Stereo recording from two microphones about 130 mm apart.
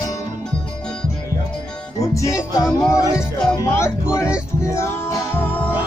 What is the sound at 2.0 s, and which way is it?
Music, 25° left (ahead or behind).